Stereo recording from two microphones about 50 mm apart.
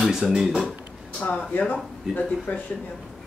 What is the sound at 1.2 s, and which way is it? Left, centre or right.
A woman's voice, left.